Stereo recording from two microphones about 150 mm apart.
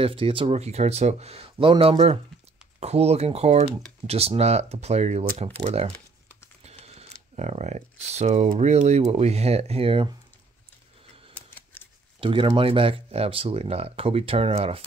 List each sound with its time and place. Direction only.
0.0 s speech: 35° right (ahead or behind)
6.6 s computer keyboard: 45° right (ahead or behind)
8.5 s speech: 50° right (ahead or behind)
12.2 s speech: 35° right (ahead or behind)